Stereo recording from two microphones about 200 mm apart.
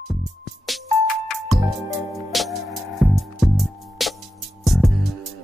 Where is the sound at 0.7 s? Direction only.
Centre (ahead or behind).